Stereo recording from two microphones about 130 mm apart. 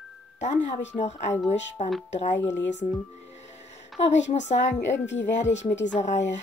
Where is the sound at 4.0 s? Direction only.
60° left (ahead or behind).